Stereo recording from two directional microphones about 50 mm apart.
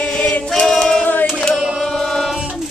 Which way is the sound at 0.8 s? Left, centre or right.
Centre.